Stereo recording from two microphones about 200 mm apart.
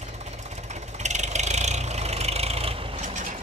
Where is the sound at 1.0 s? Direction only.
35° right (ahead or behind).